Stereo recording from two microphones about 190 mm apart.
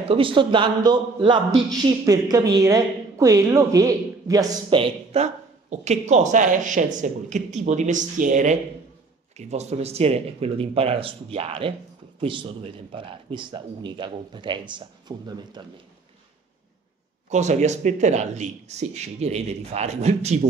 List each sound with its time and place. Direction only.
0.1 s a man's voice: 25° right (ahead or behind)
17.3 s a woman's voice: 40° right (ahead or behind)